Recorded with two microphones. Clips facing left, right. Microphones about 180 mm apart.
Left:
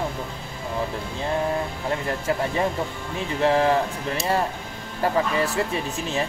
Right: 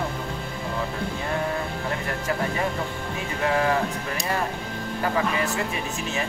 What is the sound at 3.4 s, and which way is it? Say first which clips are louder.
Speech: left 4 dB; 30° left (ahead or behind).